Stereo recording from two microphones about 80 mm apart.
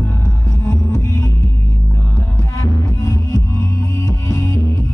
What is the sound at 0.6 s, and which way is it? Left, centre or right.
Music, left.